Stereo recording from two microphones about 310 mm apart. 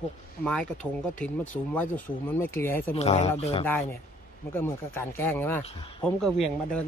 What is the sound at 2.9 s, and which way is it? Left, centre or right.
Speech, centre.